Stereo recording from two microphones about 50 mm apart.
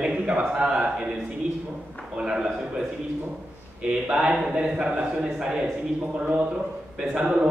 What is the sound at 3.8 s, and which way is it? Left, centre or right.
A man's voice, centre.